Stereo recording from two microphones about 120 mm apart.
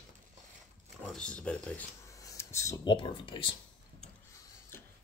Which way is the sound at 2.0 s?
25° left (ahead or behind).